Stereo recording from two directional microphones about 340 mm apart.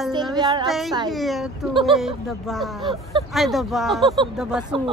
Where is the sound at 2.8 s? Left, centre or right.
Centre.